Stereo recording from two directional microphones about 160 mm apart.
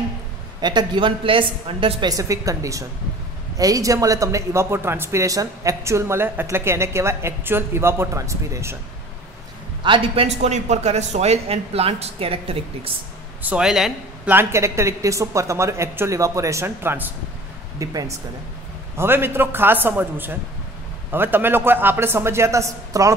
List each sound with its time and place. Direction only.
0.6 s a woman's voice: 25° right (ahead or behind)
9.8 s a man's voice: 35° right (ahead or behind)
13.4 s speech: 5° right (ahead or behind)
14.3 s a woman's voice: 15° right (ahead or behind)